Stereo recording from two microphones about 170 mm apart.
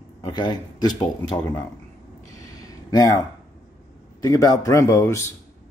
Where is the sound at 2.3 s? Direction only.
20° left (ahead or behind).